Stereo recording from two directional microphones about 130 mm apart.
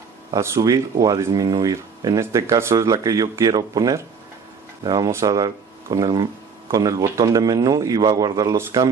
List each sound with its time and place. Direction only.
0.3 s speech: 25° right (ahead or behind)